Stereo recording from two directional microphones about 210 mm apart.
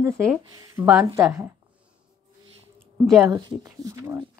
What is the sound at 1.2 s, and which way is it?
Speech, 5° right (ahead or behind).